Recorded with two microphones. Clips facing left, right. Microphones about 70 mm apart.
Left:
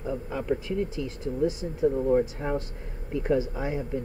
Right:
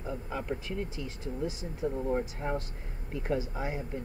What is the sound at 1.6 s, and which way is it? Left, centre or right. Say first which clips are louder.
Speech: left 8 dB; left.